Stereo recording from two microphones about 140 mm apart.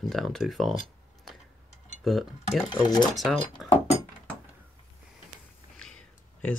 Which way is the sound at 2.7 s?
35° left (ahead or behind).